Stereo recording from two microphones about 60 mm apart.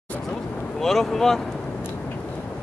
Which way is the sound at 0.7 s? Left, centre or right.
Centre.